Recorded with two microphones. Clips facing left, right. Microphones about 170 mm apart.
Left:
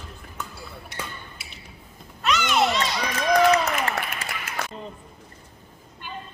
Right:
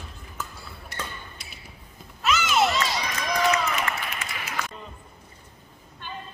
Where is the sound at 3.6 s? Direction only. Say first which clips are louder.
Left 2 dB; 35° left (ahead or behind).